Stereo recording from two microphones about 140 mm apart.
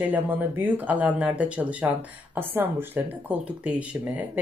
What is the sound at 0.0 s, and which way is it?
Speech, 10° right (ahead or behind).